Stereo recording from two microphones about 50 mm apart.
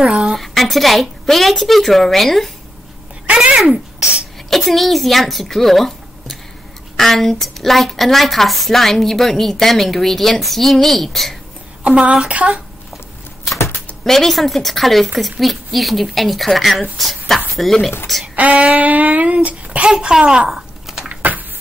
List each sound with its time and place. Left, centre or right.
0.0 s a sound: centre
0.4 s a woman's voice: centre
3.3 s a child's voice: right
4.5 s a woman's voice: centre
11.8 s a woman's voice: right
14.0 s a woman's voice: centre
18.2 s a sound: right
19.9 s a child's voice: centre
21.1 s a sound: right